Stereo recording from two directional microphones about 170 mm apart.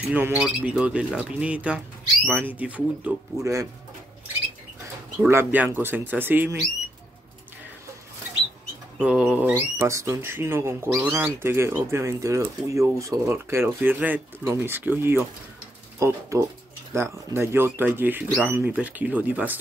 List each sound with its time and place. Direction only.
0.1 s speech: 10° right (ahead or behind)
5.3 s speech: 10° right (ahead or behind)
8.9 s speech: 5° right (ahead or behind)